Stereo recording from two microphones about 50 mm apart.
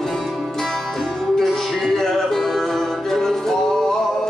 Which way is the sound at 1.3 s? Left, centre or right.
Centre.